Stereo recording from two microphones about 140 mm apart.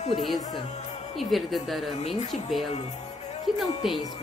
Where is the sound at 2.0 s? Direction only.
50° left (ahead or behind).